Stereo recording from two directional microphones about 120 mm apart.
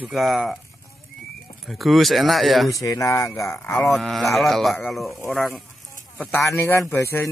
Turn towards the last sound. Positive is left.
turn(degrees=20)  # may be behind; listen again after turning